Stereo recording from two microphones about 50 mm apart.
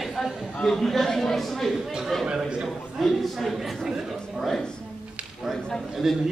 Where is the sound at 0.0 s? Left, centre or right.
Centre.